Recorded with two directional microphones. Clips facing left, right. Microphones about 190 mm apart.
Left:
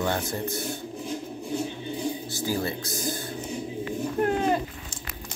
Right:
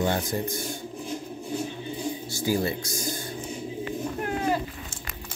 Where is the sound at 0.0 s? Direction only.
20° right (ahead or behind).